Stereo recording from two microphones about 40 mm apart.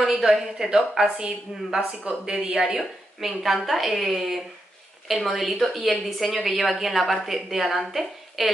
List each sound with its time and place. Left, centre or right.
0.0 s a woman's voice: centre
1.0 s speech: right
2.7 s a woman's voice: centre